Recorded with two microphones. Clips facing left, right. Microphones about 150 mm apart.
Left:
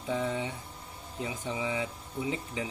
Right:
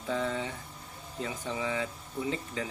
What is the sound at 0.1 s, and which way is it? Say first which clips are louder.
Speech: even; 15° left (ahead or behind).